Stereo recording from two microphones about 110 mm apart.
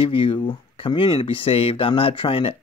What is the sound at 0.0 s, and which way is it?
Speech, 55° left (ahead or behind).